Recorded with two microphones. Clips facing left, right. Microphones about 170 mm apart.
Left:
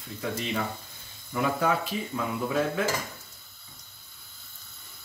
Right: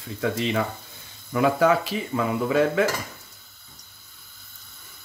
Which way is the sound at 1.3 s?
85° right.